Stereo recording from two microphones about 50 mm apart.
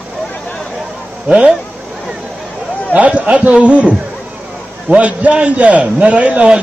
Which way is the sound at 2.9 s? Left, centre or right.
Right.